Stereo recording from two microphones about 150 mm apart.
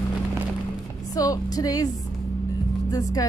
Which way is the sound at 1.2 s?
25° left (ahead or behind).